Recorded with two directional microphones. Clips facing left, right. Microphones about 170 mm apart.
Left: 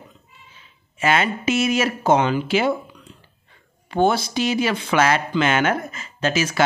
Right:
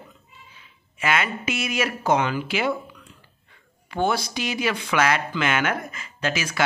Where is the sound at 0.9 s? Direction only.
30° left (ahead or behind).